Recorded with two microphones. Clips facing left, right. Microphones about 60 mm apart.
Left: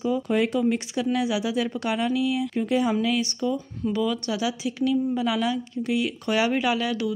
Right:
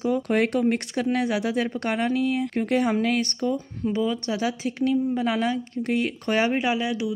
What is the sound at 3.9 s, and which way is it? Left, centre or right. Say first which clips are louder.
Speech: even; right.